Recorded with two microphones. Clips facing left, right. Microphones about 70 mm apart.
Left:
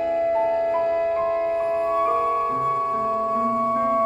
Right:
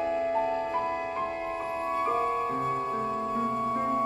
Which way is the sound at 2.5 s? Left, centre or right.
Left.